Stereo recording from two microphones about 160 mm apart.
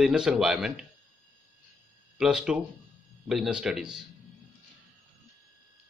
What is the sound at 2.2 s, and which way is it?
Speech, 5° right (ahead or behind).